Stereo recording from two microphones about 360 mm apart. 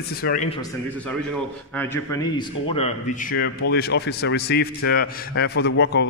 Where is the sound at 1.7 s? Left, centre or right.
Centre.